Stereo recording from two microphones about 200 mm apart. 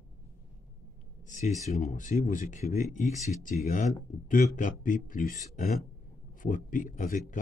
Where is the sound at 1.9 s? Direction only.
40° left (ahead or behind).